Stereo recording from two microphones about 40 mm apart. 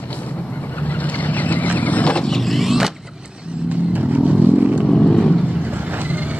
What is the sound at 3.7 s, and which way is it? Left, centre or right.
Vehicle, right.